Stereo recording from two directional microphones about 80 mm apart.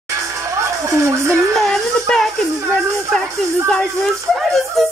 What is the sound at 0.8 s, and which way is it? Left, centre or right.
Speech, right.